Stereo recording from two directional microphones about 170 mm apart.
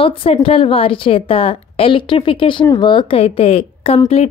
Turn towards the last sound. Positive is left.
turn(degrees=35)  # may be behind; listen again after turning